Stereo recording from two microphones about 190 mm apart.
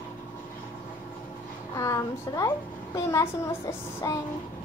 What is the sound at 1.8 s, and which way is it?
A woman's voice, 15° left (ahead or behind).